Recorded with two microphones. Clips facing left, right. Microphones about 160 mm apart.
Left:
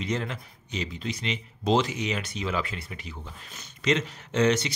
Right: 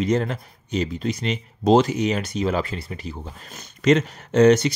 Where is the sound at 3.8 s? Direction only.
45° right (ahead or behind).